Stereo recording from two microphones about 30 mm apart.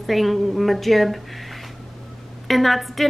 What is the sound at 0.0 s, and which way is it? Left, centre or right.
A woman's voice, centre.